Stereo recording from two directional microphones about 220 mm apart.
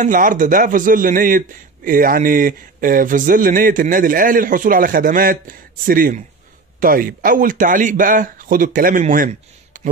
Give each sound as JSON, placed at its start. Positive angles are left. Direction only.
{"t": 0.0, "sound": "a man's voice", "side_deg": -35}